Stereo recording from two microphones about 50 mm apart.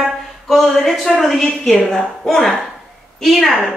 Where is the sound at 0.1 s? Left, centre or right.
Centre.